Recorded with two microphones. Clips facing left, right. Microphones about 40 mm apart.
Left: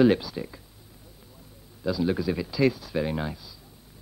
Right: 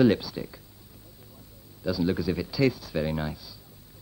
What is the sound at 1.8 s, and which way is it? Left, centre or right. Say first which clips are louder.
A man's voice: left 1 dB; centre.